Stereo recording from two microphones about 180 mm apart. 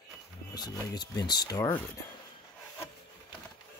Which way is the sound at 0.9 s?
25° left (ahead or behind).